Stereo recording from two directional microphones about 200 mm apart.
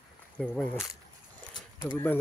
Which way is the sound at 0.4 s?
5° left (ahead or behind).